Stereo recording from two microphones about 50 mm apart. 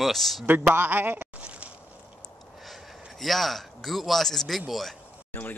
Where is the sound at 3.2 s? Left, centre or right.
Centre.